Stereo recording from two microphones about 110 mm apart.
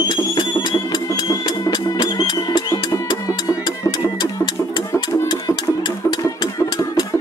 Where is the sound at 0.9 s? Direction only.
40° left (ahead or behind).